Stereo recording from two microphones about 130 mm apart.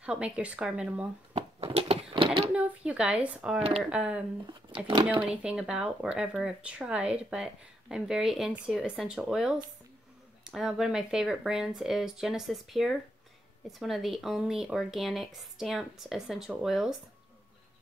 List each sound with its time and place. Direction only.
0.0 s speech: 10° right (ahead or behind)
1.3 s a sound: 50° right (ahead or behind)
2.5 s speech: 10° right (ahead or behind)
3.5 s speech: 50° right (ahead or behind)
3.9 s speech: 10° right (ahead or behind)
4.5 s speech: 35° right (ahead or behind)
5.2 s speech: 10° right (ahead or behind)